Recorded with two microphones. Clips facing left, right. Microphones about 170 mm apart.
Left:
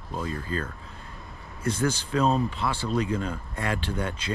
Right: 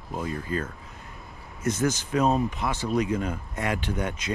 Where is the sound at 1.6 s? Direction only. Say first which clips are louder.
Right 1 dB; 30° left (ahead or behind).